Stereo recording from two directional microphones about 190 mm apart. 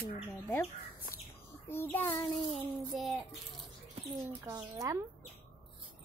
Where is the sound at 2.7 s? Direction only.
Centre (ahead or behind).